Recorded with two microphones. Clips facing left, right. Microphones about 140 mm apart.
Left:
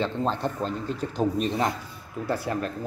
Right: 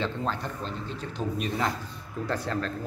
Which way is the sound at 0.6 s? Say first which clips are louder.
Left 6 dB; 45° left (ahead or behind).